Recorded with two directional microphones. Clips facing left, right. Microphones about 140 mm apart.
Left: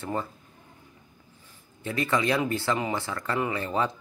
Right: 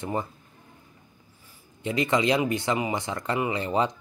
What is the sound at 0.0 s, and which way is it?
Speech, 20° right (ahead or behind).